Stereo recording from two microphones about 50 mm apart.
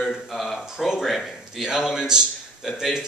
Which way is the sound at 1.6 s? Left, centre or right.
Centre.